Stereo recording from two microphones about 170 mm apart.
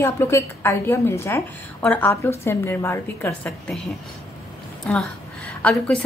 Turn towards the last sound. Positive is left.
turn(degrees=10)  # may be behind; listen again after turning